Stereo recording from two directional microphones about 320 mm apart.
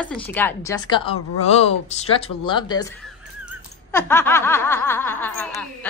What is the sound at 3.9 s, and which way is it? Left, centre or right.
A woman's voice, centre.